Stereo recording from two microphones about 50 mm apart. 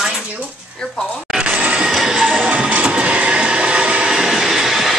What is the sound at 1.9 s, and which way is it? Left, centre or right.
Music, centre.